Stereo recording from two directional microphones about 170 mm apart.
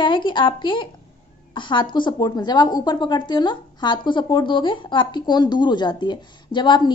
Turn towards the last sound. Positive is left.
turn(degrees=25)  # may be behind; listen again after turning